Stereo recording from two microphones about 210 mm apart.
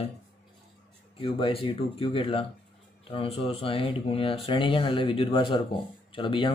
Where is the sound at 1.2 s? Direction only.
25° left (ahead or behind).